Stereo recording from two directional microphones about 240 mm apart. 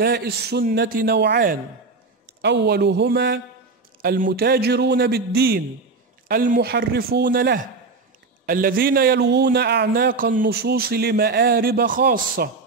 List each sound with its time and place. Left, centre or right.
0.0 s a man's voice: right